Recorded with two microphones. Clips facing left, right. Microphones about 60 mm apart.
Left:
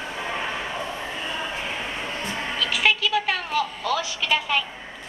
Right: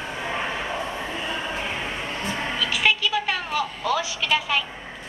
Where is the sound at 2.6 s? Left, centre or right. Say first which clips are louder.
Left 1 dB; centre.